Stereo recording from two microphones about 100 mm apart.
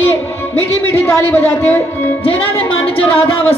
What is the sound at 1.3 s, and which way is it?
Speech, 15° left (ahead or behind).